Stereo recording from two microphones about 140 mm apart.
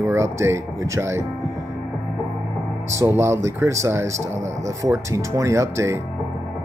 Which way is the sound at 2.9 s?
20° right (ahead or behind).